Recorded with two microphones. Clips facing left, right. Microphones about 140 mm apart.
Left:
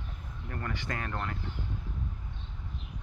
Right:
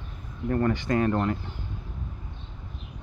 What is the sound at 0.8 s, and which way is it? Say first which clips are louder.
Speech: right 12 dB; 25° right (ahead or behind).